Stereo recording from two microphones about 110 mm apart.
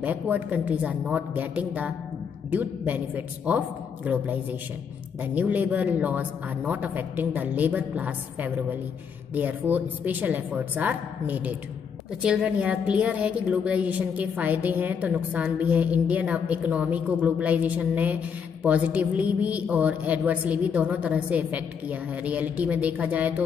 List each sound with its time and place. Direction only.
0.0 s a woman's voice: 15° right (ahead or behind)